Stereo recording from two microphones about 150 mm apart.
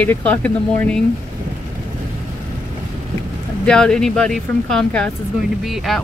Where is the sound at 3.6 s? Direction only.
5° left (ahead or behind).